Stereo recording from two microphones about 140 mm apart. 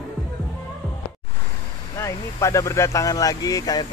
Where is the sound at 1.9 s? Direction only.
20° left (ahead or behind).